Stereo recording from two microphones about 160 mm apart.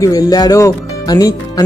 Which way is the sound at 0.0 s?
20° left (ahead or behind).